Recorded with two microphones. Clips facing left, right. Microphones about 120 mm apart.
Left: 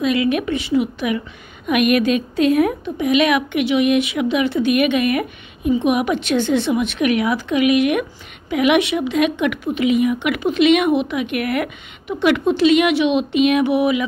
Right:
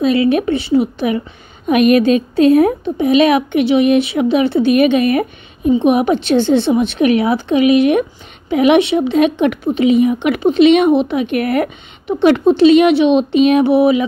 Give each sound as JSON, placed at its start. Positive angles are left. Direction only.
{"t": 0.0, "sound": "a woman's voice", "side_deg": -35}